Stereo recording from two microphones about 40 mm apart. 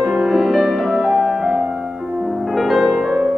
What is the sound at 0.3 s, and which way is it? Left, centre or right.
Music, centre.